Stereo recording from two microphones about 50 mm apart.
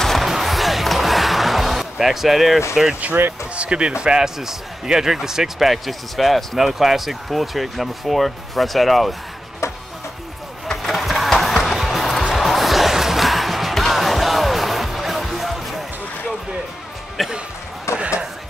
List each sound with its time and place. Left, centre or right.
0.0 s music: centre
2.7 s speech: centre
3.5 s speech: right; by 9.1 s centre
10.8 s vehicle: centre
11.2 s music: centre
17.2 s music: centre
17.9 s a sound: left